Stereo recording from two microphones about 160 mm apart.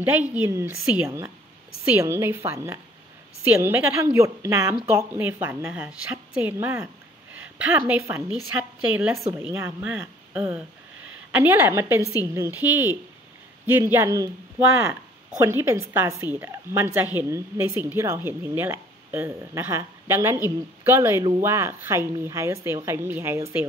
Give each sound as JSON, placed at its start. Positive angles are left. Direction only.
{"t": 0.0, "sound": "a woman's voice", "side_deg": -10}